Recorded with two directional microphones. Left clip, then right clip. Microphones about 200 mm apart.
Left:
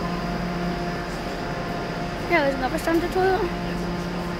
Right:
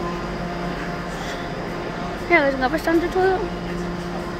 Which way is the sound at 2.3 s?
10° right (ahead or behind).